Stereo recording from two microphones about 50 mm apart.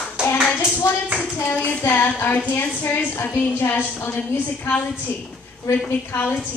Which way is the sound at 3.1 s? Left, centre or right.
Left.